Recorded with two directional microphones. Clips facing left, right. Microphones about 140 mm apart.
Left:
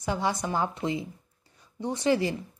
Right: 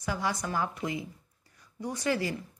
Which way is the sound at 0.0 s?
25° left (ahead or behind).